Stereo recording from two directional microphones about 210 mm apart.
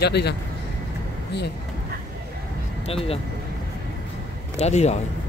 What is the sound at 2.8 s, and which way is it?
Speech, 30° left (ahead or behind).